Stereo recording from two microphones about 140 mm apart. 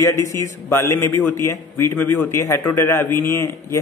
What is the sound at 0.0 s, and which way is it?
A man's voice, 20° left (ahead or behind).